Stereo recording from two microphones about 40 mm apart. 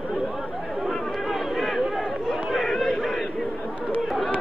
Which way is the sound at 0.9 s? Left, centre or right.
Centre.